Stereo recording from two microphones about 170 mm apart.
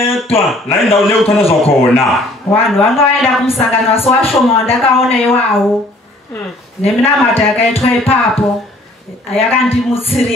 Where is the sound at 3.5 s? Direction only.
35° left (ahead or behind).